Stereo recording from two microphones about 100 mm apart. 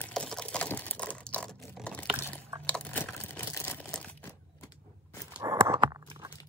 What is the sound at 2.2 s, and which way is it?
Biting, 20° left (ahead or behind).